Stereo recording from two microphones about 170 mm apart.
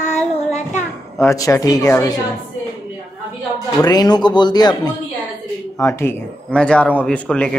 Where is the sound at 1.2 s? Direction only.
20° left (ahead or behind).